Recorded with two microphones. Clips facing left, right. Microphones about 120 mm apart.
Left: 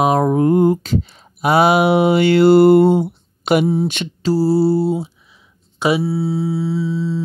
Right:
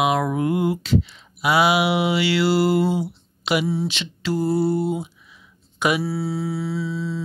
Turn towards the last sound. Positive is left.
turn(degrees=25)  # may be behind; listen again after turning